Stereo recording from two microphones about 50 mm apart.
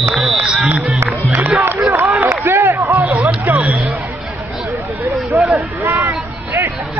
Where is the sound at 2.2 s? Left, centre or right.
Right.